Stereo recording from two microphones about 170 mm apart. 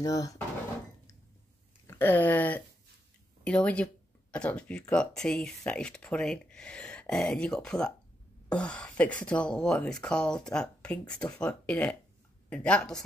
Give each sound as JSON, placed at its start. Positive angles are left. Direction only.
{"t": 0.0, "sound": "speech", "side_deg": 20}
{"t": 1.9, "sound": "speech", "side_deg": 10}